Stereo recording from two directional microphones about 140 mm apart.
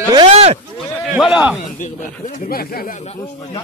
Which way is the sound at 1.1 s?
5° right (ahead or behind).